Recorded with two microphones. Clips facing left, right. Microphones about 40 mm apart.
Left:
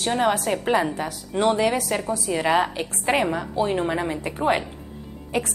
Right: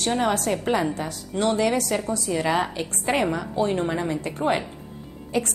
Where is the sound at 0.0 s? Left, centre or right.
Centre.